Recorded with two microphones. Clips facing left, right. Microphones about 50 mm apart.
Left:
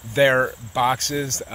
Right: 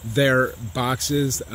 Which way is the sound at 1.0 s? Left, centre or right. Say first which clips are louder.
Right 3 dB; left.